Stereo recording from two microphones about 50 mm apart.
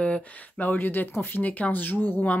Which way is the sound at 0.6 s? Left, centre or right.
Left.